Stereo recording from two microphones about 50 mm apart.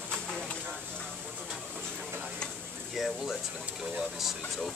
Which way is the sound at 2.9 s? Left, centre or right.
Centre.